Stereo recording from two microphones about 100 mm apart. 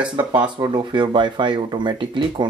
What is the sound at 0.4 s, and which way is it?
Speech, 50° right (ahead or behind).